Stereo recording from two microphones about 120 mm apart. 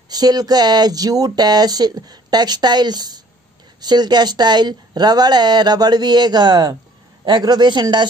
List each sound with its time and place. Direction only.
0.1 s speech: 35° right (ahead or behind)